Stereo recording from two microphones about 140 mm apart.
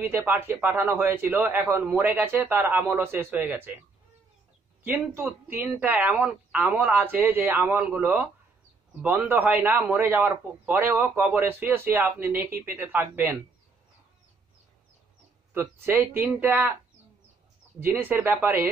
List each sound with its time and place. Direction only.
0.3 s a man's voice: 15° right (ahead or behind)
4.8 s a man's voice: 10° right (ahead or behind)
15.5 s a man's voice: 15° right (ahead or behind)
17.7 s a man's voice: 15° right (ahead or behind)